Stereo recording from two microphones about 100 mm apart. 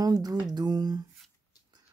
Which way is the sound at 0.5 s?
45° right (ahead or behind).